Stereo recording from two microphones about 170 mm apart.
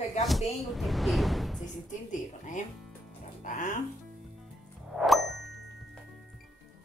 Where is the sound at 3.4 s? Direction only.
50° left (ahead or behind).